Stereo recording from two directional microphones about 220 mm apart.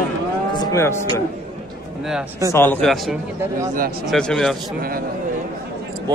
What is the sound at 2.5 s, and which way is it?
A man's voice, 10° left (ahead or behind).